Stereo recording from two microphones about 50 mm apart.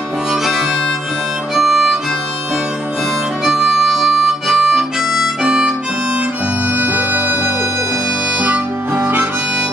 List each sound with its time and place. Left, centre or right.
0.3 s harmonica: centre
1.5 s music: centre
3.4 s harmonica: centre
6.7 s music: right